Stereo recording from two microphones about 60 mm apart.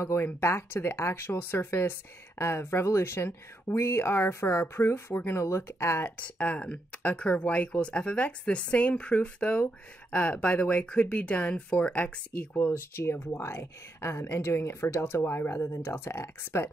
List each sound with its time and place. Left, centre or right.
0.0 s speech: left
6.1 s speech: left
12.5 s speech: left